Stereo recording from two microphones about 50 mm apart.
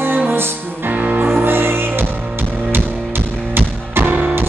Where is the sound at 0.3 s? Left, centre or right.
Right.